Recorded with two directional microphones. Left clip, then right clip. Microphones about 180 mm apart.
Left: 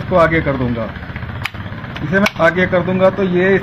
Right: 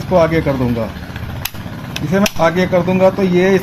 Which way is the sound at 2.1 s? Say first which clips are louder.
Left 1 dB; 30° right (ahead or behind).